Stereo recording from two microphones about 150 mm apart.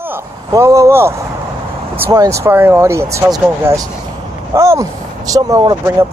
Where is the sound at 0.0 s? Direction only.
15° right (ahead or behind).